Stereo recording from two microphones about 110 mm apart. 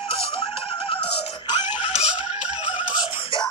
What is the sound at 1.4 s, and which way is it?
Music, 40° left (ahead or behind).